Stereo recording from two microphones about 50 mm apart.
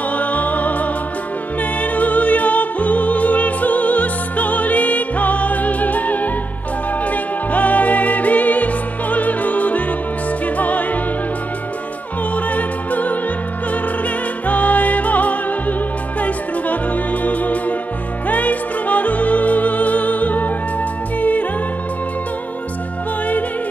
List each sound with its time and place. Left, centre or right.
0.1 s music: left
9.1 s opera: left
10.4 s music: left
12.4 s opera: left
14.0 s music: left